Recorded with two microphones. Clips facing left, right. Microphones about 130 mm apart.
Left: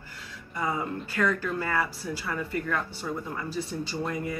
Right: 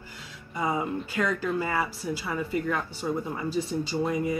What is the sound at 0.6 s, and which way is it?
Speech, 15° right (ahead or behind).